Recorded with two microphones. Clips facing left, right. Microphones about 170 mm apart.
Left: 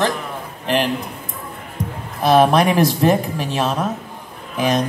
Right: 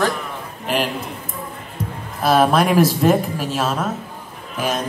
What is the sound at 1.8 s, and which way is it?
Music, 15° left (ahead or behind).